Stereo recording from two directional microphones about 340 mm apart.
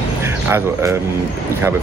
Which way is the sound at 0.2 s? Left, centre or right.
Centre.